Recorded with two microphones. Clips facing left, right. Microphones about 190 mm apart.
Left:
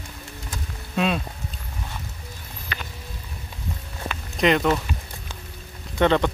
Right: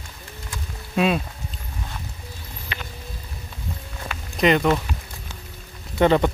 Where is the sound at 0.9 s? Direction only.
5° right (ahead or behind).